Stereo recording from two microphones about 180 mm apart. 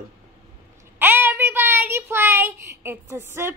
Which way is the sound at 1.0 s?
10° right (ahead or behind).